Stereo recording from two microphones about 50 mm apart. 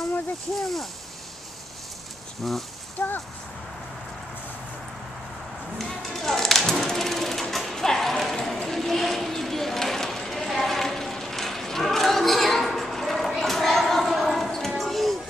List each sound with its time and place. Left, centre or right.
0.6 s speech: centre
2.4 s speech: centre
3.0 s speech: left
5.8 s a sound: centre
14.8 s music: centre